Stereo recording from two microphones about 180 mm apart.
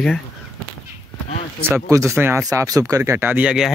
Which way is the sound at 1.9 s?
15° right (ahead or behind).